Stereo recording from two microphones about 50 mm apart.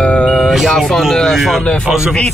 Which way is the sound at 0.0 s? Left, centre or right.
Left.